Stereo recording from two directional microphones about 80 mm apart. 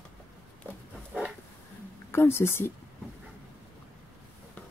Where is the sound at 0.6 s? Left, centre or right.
Right.